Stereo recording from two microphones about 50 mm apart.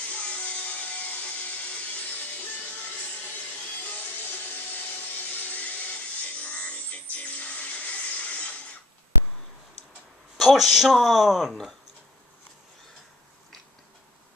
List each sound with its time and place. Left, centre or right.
0.0 s music: left
3.8 s music: left
5.3 s a sound: left
6.4 s music: left
10.3 s speech: centre